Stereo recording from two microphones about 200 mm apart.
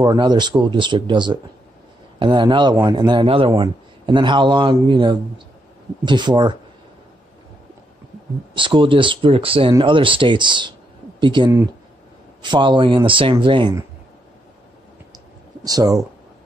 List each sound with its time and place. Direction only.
0.0 s a man's voice: 20° right (ahead or behind)
8.5 s a man's voice: 25° right (ahead or behind)
15.1 s clicking: 20° right (ahead or behind)